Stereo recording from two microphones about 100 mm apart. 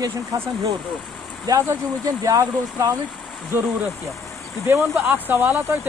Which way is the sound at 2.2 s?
35° right (ahead or behind).